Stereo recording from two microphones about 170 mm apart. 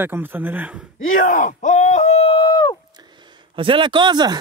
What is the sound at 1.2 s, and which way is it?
Speech, 50° left (ahead or behind).